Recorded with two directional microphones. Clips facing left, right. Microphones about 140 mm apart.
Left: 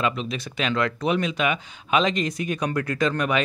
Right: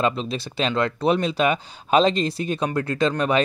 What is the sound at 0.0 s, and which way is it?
Speech, 30° right (ahead or behind).